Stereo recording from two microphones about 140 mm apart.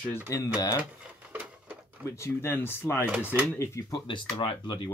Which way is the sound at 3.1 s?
10° right (ahead or behind).